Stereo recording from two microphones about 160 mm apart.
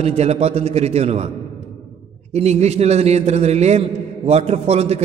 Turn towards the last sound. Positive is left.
turn(degrees=-40)  # may be behind; listen again after turning